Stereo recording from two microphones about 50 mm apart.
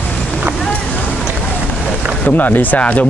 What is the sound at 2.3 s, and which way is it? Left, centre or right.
Speech, left.